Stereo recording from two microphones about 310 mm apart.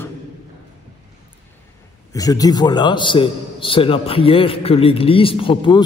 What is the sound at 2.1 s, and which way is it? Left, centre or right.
A man's voice, centre.